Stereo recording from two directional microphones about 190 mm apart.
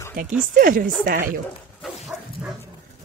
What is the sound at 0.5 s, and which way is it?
Speech, 45° right (ahead or behind).